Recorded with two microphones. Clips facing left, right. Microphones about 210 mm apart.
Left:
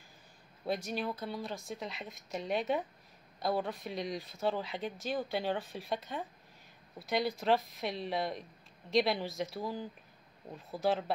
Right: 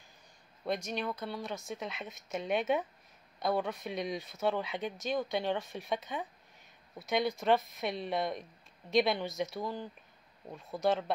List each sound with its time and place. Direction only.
0.7 s speech: 5° left (ahead or behind)